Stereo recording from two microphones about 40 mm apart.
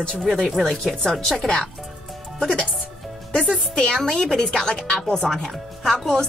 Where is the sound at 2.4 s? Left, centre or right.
Centre.